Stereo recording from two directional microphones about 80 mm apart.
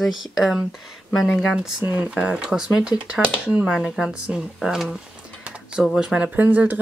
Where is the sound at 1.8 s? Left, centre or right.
Right.